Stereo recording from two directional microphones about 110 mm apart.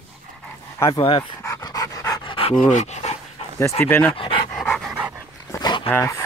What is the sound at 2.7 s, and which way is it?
Dog, 90° left.